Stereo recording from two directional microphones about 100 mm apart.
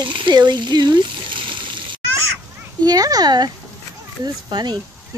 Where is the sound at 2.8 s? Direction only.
40° right (ahead or behind).